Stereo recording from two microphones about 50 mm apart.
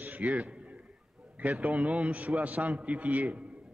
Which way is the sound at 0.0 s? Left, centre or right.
Right.